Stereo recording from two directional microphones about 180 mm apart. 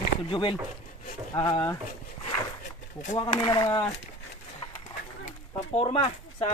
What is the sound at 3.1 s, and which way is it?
Speech, 25° left (ahead or behind).